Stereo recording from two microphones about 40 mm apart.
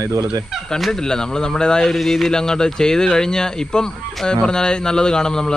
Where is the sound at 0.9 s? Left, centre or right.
Centre.